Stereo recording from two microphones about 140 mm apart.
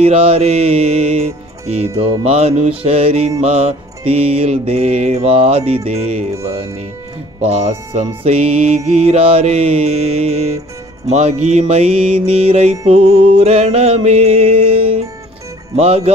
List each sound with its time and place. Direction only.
0.0 s music: 45° right (ahead or behind)